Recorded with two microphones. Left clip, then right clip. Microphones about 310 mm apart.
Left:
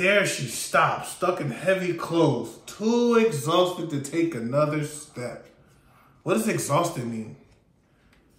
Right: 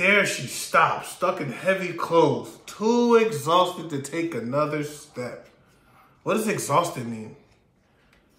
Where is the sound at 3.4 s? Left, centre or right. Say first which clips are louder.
Right 2 dB; centre.